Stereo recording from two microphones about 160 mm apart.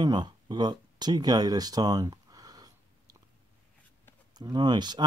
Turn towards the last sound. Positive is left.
turn(degrees=-25)  # may be behind; listen again after turning